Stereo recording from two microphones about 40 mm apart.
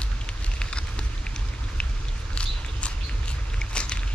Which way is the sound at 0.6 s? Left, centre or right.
Left.